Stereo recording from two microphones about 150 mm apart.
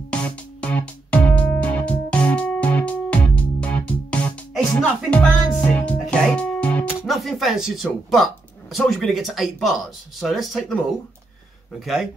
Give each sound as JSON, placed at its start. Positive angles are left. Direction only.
{"t": 0.1, "sound": "music", "side_deg": 10}
{"t": 7.1, "sound": "speech", "side_deg": 0}
{"t": 11.8, "sound": "speech", "side_deg": 0}